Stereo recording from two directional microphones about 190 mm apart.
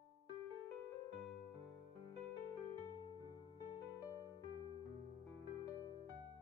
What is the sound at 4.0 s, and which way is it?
Music, 15° left (ahead or behind).